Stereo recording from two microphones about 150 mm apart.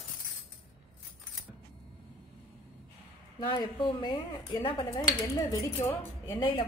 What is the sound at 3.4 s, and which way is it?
A woman's voice, 30° left (ahead or behind).